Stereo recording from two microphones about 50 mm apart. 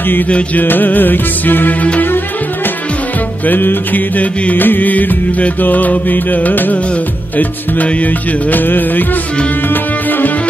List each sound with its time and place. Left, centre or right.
0.0 s music: left
2.0 s music: left